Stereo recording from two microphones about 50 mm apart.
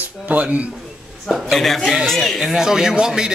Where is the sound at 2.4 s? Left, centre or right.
Centre.